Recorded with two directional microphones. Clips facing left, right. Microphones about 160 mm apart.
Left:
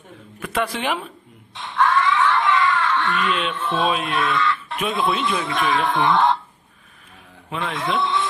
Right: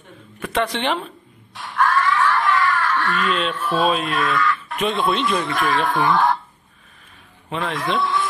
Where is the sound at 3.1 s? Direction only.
Centre (ahead or behind).